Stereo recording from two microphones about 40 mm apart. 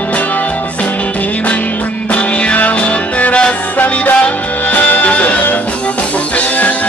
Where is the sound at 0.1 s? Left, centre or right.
Left.